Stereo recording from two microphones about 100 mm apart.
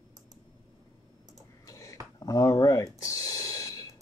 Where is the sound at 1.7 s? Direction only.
35° left (ahead or behind).